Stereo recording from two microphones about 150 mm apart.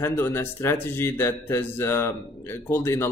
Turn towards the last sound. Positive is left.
turn(degrees=15)  # may be behind; listen again after turning